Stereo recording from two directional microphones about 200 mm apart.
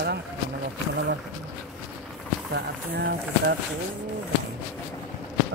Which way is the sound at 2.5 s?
55° right (ahead or behind).